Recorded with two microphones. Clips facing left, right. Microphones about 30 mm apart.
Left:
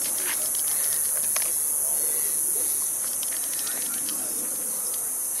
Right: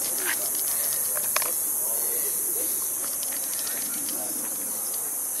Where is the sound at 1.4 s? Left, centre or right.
Right.